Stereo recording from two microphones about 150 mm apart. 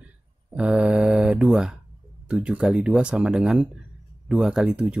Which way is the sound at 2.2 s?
5° right (ahead or behind).